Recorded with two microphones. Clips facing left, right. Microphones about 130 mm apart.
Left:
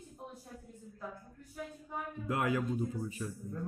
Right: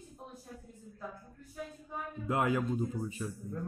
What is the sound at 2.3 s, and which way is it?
Speech, 25° right (ahead or behind).